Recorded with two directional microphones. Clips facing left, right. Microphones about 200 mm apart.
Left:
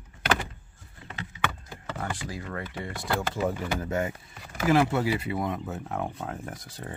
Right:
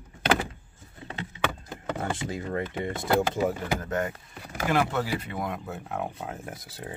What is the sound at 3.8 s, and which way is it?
Speech, 10° left (ahead or behind).